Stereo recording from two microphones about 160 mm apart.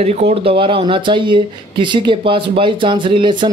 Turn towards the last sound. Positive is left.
turn(degrees=-30)  # may be behind; listen again after turning